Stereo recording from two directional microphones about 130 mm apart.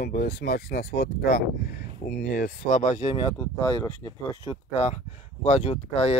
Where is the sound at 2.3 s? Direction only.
90° left; by 3.0 s 70° left (ahead or behind).